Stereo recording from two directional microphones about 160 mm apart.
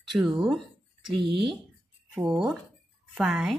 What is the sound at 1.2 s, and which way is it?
Speech, 30° right (ahead or behind).